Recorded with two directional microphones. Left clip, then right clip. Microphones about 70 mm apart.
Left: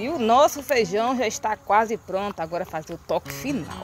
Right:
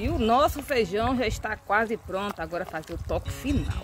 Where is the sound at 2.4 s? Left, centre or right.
Centre.